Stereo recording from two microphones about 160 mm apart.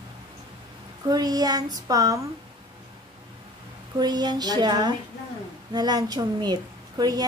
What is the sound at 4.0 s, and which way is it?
A woman's voice, 25° right (ahead or behind).